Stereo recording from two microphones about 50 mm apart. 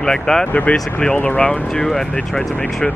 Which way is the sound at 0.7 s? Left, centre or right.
Left.